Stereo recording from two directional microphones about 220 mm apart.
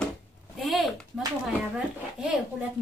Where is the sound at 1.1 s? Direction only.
5° right (ahead or behind).